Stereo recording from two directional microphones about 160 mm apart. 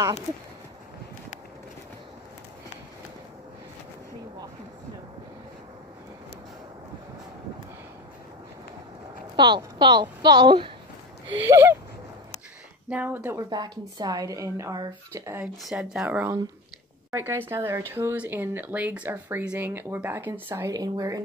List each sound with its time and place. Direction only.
9.4 s a woman's voice: 25° right (ahead or behind)
11.4 s speech: 15° right (ahead or behind)
12.9 s a woman's voice: 10° right (ahead or behind)
15.6 s speech: 5° right (ahead or behind); by 21.2 s 20° right (ahead or behind)